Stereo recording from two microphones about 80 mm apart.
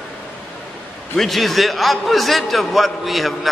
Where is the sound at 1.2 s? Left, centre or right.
Centre.